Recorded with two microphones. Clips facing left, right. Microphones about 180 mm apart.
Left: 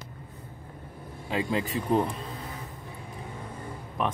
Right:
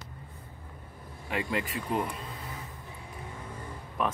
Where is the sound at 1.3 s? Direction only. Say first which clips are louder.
Left 3 dB; 25° left (ahead or behind).